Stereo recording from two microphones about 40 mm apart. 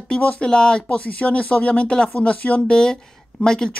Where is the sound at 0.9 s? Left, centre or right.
Left.